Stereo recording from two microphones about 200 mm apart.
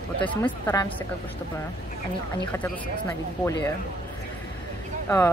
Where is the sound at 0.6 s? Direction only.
15° left (ahead or behind).